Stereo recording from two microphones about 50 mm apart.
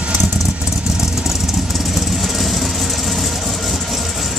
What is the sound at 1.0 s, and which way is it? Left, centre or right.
Vehicle, centre.